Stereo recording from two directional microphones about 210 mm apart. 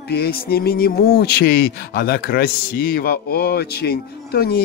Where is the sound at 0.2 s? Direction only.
45° left (ahead or behind).